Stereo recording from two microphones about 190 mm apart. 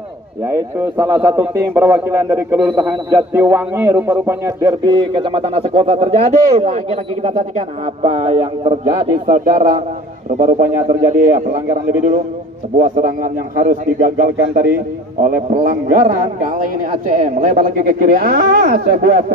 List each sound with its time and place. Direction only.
0.5 s a man's voice: 15° right (ahead or behind); by 8.7 s 30° right (ahead or behind)
9.3 s speech: 45° right (ahead or behind)